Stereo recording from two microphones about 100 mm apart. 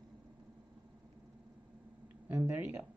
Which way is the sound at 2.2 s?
15° right (ahead or behind).